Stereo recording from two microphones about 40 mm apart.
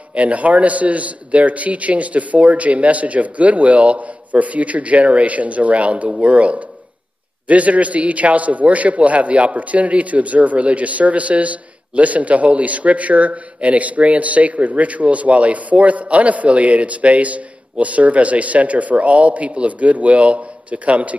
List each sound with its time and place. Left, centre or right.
0.1 s a man's voice: right